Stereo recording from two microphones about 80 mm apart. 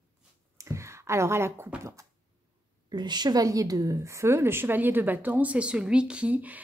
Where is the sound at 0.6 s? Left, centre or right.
Right.